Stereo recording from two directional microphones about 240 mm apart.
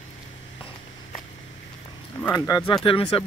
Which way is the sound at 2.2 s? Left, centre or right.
Centre.